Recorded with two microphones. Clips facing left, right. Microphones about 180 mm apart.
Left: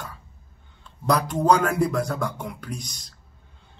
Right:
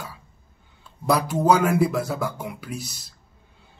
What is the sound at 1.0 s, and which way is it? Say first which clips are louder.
Speech: right 1 dB; 5° right (ahead or behind).